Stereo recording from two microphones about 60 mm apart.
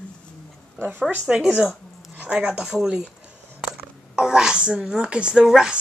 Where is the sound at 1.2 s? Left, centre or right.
Centre.